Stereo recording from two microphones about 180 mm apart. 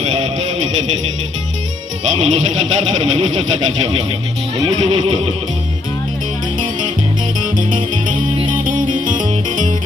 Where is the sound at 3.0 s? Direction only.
40° right (ahead or behind).